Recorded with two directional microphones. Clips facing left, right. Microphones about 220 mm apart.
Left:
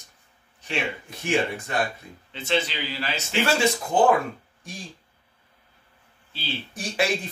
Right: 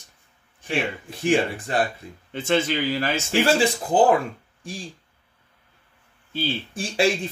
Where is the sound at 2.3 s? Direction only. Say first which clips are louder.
Right 4 dB; 50° right (ahead or behind).